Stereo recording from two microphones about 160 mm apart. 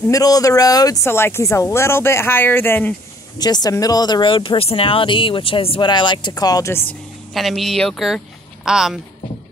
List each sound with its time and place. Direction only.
0.1 s speech: 20° left (ahead or behind)
3.3 s speech: 25° left (ahead or behind)
7.3 s speech: centre (ahead or behind)